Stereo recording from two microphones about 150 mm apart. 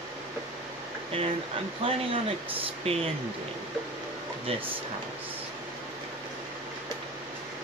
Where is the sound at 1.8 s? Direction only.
35° right (ahead or behind).